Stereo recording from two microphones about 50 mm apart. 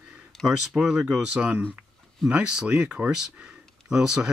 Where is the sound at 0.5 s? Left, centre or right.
Centre.